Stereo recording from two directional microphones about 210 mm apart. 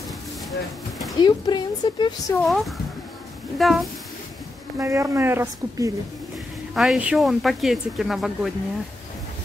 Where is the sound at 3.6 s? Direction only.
Centre (ahead or behind).